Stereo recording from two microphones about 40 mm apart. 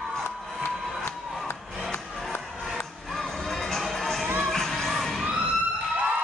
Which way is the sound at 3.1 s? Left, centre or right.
Centre.